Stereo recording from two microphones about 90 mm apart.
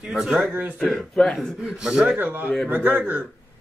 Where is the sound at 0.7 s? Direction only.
5° left (ahead or behind).